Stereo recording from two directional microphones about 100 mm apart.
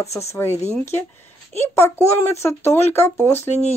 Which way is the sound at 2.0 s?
25° left (ahead or behind).